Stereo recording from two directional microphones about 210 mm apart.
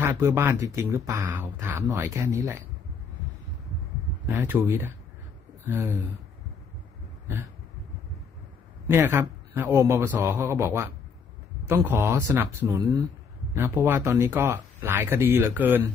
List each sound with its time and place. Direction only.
0.0 s speech: 15° right (ahead or behind)
4.3 s speech: 10° right (ahead or behind)
8.8 s speech: 10° right (ahead or behind)